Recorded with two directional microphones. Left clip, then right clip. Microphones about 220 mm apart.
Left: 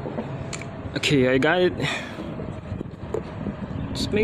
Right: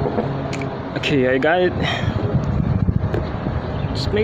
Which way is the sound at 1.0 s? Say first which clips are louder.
Right 3 dB; 35° left (ahead or behind).